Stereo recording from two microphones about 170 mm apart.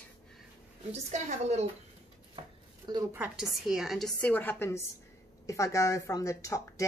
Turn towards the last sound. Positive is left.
turn(degrees=20)  # may be behind; listen again after turning